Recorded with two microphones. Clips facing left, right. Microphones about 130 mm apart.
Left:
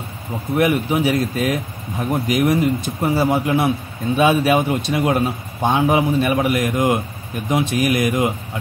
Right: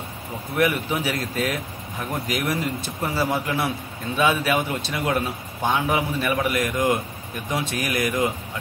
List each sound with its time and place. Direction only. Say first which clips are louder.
0.6 s speech: left 5 dB; 20° left (ahead or behind)